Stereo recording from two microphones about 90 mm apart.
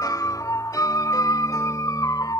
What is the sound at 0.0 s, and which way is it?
Music, 40° left (ahead or behind).